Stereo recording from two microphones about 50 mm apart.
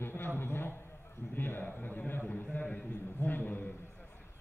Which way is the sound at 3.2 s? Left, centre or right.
Left.